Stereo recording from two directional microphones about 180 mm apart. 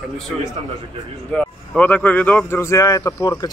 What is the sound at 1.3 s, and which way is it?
A man's voice, 5° left (ahead or behind).